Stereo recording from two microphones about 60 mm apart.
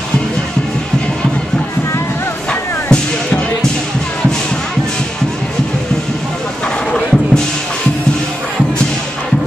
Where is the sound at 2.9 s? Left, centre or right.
Centre.